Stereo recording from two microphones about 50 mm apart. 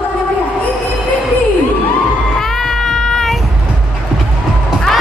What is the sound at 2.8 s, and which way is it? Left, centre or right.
Child singing, centre.